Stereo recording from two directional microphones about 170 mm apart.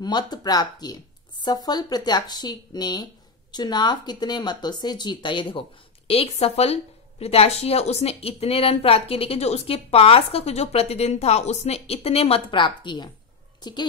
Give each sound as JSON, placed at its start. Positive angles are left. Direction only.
{"t": 0.0, "sound": "a woman's voice", "side_deg": 25}